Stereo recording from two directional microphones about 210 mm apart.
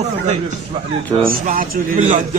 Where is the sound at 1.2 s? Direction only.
40° right (ahead or behind).